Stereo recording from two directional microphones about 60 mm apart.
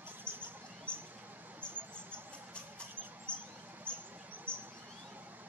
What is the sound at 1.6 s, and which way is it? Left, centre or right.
Rodents, centre.